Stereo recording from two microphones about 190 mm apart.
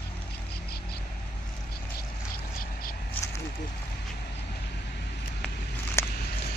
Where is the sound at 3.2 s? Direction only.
10° left (ahead or behind).